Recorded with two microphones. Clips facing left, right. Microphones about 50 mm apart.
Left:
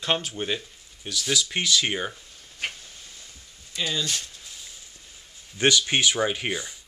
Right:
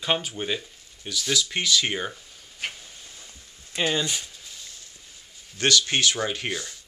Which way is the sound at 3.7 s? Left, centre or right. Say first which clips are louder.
Right 4 dB; right.